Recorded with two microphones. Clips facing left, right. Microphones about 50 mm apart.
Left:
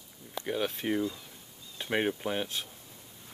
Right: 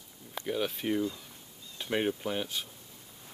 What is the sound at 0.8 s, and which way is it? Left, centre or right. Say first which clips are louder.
Speech: even; centre.